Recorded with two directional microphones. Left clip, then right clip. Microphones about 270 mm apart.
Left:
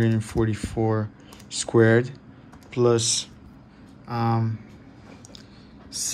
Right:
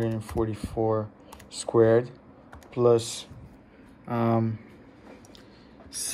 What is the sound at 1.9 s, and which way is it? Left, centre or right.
Speech, centre.